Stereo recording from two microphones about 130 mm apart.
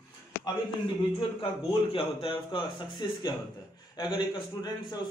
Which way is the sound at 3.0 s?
35° left (ahead or behind).